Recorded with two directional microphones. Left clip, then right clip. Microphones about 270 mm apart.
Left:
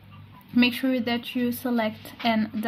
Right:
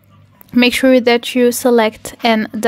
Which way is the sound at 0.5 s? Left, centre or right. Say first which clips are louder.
Right 13 dB; right.